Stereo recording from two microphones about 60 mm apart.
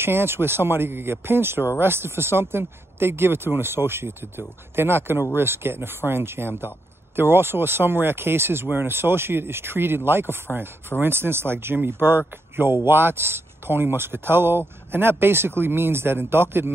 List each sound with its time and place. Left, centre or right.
0.0 s speech: right